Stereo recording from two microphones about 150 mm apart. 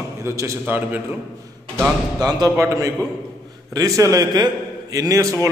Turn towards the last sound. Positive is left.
turn(degrees=-20)  # may be behind; listen again after turning